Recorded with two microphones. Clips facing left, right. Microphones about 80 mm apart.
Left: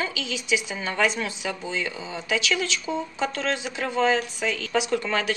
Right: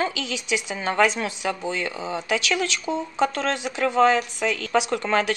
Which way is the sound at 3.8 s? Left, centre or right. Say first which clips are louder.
Right 5 dB; right.